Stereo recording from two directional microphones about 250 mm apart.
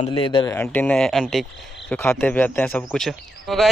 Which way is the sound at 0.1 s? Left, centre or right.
Centre.